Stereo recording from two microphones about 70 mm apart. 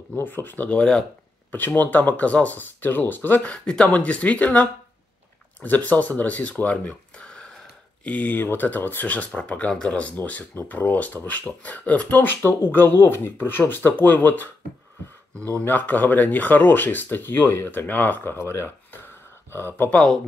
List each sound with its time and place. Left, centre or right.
0.1 s speech: left
0.7 s speech: centre
1.8 s speech: left
8.0 s speech: left
15.3 s speech: centre; by 19.9 s left